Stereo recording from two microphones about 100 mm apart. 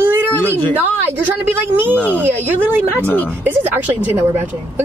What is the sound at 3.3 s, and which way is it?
A woman's voice, 20° right (ahead or behind).